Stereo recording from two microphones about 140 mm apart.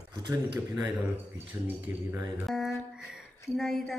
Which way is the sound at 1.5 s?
15° right (ahead or behind).